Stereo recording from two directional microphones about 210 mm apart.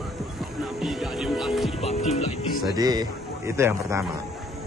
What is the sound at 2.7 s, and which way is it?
Speech, 20° right (ahead or behind).